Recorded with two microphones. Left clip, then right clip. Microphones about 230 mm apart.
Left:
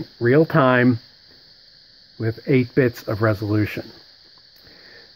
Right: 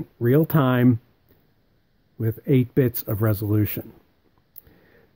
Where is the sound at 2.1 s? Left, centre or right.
Right.